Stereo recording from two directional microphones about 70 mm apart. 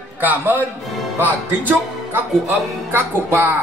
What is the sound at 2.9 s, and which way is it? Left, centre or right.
Speech, right.